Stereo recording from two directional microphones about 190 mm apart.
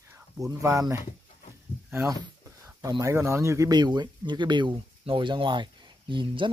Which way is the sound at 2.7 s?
20° right (ahead or behind).